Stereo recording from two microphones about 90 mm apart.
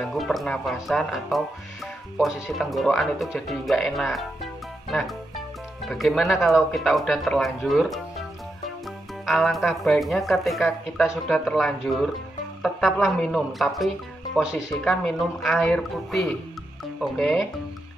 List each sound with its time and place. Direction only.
0.0 s speech: centre (ahead or behind)